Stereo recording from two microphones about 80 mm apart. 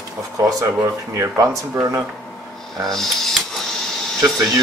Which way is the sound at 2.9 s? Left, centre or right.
Centre.